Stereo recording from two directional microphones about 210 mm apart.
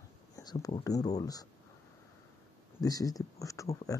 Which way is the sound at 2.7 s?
15° left (ahead or behind).